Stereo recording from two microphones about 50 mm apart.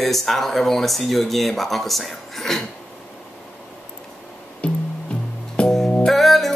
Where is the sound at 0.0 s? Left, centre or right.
Centre.